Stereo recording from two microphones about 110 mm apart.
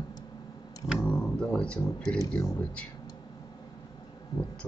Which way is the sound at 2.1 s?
30° left (ahead or behind).